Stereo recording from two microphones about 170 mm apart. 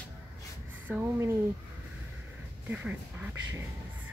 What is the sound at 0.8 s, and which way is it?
Speech, 10° right (ahead or behind).